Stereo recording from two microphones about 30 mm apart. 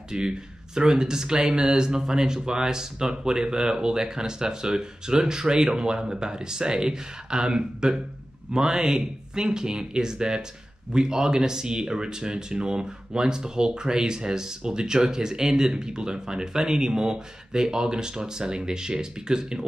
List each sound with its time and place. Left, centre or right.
0.1 s speech: right